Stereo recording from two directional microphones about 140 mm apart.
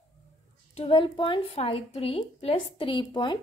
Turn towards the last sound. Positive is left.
turn(degrees=35)  # may be behind; listen again after turning